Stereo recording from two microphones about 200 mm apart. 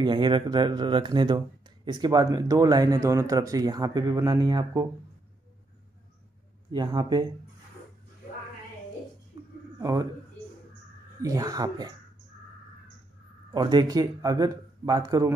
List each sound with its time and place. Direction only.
0.0 s speech: 25° right (ahead or behind)
6.7 s speech: 20° right (ahead or behind)
9.8 s a man's voice: 15° right (ahead or behind)
11.2 s speech: 15° right (ahead or behind)
13.5 s speech: 20° right (ahead or behind)